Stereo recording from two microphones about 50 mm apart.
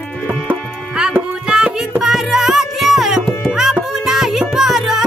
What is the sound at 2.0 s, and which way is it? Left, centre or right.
Music, centre.